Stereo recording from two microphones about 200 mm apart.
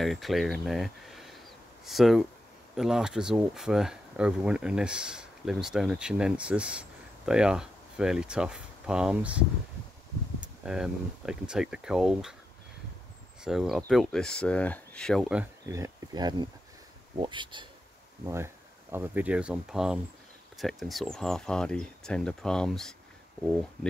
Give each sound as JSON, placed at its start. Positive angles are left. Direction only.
{"t": 0.0, "sound": "speech", "side_deg": 0}
{"t": 10.4, "sound": "speech", "side_deg": -5}
{"t": 13.4, "sound": "speech", "side_deg": 0}
{"t": 15.6, "sound": "speech", "side_deg": -15}
{"t": 18.2, "sound": "speech", "side_deg": -15}